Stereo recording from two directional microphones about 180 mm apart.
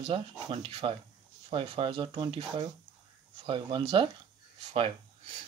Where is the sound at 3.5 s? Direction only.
25° right (ahead or behind).